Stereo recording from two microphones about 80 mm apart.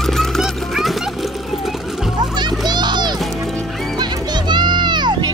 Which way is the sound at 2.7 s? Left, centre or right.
Right.